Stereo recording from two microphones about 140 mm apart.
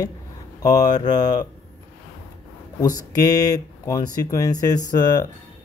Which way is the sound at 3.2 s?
30° left (ahead or behind).